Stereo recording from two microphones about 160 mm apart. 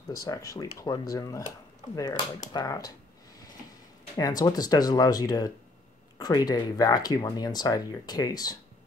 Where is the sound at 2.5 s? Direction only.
25° left (ahead or behind).